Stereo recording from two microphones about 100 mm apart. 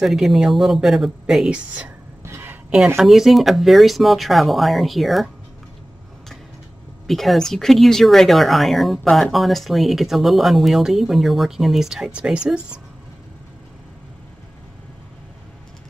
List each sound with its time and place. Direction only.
0.0 s speech: 5° right (ahead or behind)
2.2 s a sound: 25° right (ahead or behind)
3.0 s speech: centre (ahead or behind)
7.1 s speech: centre (ahead or behind)